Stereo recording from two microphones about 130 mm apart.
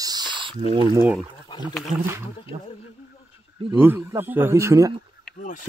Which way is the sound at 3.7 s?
15° right (ahead or behind).